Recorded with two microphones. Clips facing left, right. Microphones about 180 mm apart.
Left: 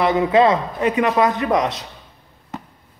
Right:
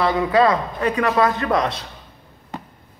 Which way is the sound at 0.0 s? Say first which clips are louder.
Left 2 dB; 25° left (ahead or behind).